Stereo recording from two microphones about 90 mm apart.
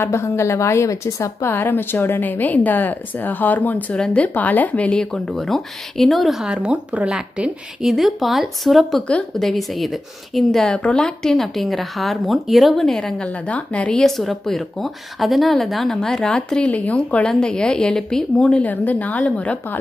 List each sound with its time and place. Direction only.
0.0 s a woman's voice: 30° left (ahead or behind); by 5.2 s 10° left (ahead or behind)
5.3 s speech: centre (ahead or behind)
9.0 s a woman's voice: 10° left (ahead or behind)
9.5 s a woman's voice: centre (ahead or behind); by 19.8 s 15° left (ahead or behind)